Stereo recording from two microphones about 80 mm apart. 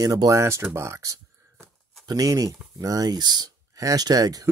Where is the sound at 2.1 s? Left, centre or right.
Right.